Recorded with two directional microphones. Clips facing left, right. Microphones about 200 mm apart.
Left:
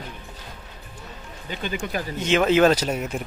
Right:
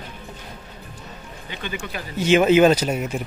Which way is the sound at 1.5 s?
45° left (ahead or behind).